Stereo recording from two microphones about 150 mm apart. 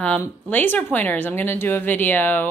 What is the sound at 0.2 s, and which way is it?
Speech, 10° left (ahead or behind).